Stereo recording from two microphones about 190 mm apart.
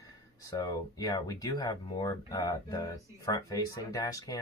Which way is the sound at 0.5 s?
20° left (ahead or behind).